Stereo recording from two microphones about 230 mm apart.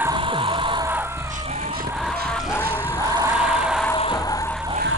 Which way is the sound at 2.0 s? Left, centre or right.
Centre.